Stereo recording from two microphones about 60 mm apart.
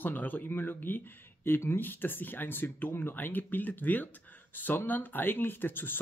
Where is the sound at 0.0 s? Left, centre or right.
Left.